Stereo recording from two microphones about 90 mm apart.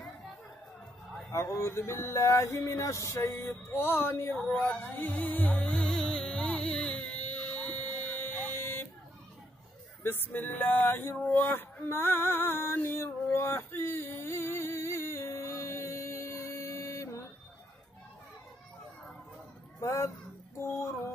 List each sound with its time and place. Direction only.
1.5 s mantra: 30° left (ahead or behind)
5.6 s music: 10° left (ahead or behind)
10.0 s mantra: 25° left (ahead or behind)
11.3 s a sound: 20° left (ahead or behind)
19.8 s speech: 30° left (ahead or behind)
20.5 s music: 35° left (ahead or behind)